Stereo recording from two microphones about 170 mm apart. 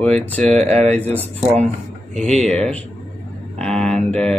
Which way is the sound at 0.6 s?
40° right (ahead or behind).